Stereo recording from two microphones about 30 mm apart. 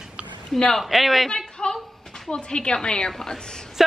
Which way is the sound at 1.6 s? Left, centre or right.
Left.